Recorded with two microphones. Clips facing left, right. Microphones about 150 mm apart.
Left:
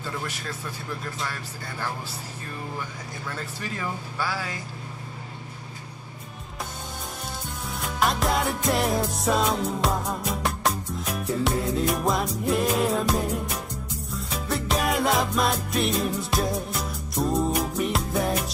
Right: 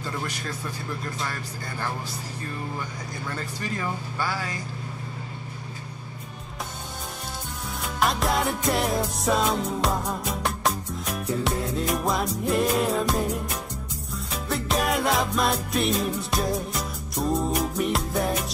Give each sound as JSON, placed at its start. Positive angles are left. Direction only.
{"t": 1.2, "sound": "speech", "side_deg": 0}
{"t": 3.3, "sound": "speech", "side_deg": 0}
{"t": 7.8, "sound": "music", "side_deg": 0}